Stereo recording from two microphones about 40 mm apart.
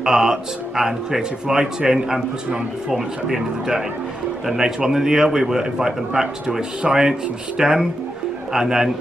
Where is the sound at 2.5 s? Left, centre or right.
Right.